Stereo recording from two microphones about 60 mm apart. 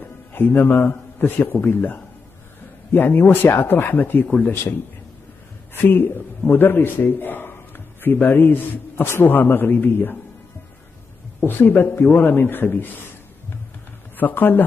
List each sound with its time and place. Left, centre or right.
0.3 s a man's voice: left
5.8 s a man's voice: left
11.4 s a man's voice: left
14.1 s speech: left